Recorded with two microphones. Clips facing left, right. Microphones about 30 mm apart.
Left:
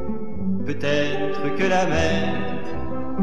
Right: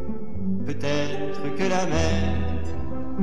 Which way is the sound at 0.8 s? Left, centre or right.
Left.